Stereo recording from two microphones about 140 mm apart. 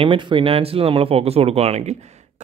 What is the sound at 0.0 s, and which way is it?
A man's voice, 35° right (ahead or behind).